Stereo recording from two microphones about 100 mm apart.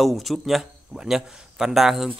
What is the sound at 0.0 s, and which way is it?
A man's voice, centre (ahead or behind).